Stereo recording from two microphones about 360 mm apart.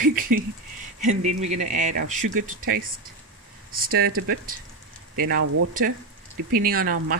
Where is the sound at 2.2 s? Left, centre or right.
Right.